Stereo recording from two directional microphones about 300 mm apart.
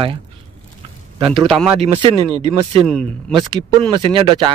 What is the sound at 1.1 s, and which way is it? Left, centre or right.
Speech, centre.